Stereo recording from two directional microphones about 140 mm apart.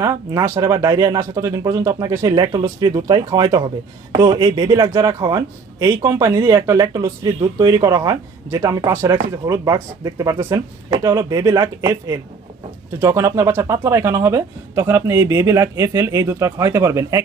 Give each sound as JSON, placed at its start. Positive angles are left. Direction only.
{"t": 0.0, "sound": "speech", "side_deg": -25}